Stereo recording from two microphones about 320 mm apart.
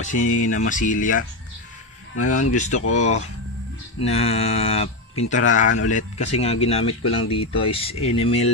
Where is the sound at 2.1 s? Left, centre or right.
Left.